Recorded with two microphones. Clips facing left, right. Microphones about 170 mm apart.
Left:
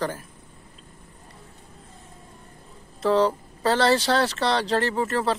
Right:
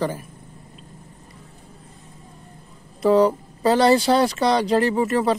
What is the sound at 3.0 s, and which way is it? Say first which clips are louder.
Speech: right 4 dB; 10° right (ahead or behind).